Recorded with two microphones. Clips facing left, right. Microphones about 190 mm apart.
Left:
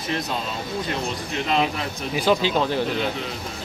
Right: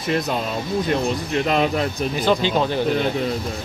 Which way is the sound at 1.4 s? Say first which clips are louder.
Right 2 dB; 50° right (ahead or behind).